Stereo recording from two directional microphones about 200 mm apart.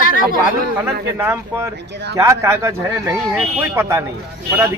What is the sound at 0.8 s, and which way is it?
Speech, 10° right (ahead or behind).